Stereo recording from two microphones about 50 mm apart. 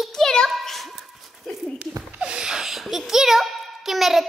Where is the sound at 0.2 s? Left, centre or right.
Centre.